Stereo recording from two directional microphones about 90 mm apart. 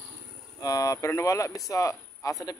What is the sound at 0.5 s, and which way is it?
Speech, 40° left (ahead or behind).